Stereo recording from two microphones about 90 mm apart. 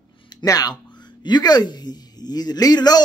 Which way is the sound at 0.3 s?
50° left (ahead or behind).